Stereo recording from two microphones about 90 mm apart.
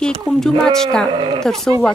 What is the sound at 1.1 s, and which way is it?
Speech, 70° right (ahead or behind).